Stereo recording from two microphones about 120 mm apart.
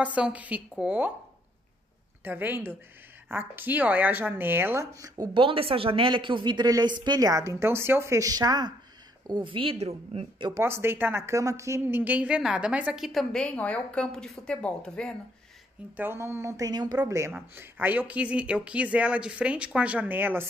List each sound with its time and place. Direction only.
0.0 s speech: 10° right (ahead or behind)
2.2 s speech: 15° right (ahead or behind)
5.3 s speech: 50° right (ahead or behind)
9.3 s a woman's voice: 45° right (ahead or behind)
10.5 s speech: 20° right (ahead or behind); by 15.1 s 5° left (ahead or behind)
16.0 s speech: 20° right (ahead or behind)